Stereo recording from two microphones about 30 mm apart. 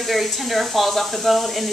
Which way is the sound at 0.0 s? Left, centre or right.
Centre.